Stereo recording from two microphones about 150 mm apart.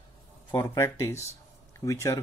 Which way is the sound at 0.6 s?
20° left (ahead or behind).